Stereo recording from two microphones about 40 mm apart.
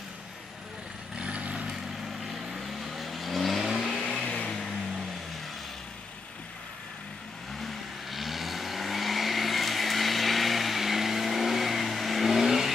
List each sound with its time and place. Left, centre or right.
1.1 s vehicle: right
2.5 s vehicle: centre
4.5 s vehicle: centre
7.5 s vehicle: centre